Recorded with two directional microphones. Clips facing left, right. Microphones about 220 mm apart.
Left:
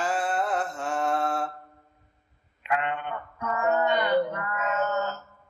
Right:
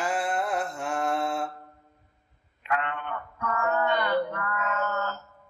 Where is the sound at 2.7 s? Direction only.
20° left (ahead or behind).